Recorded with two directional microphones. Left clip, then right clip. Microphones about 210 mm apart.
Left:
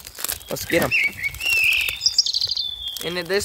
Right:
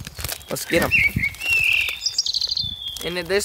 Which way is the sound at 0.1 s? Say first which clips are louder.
Left 2 dB; 30° left (ahead or behind).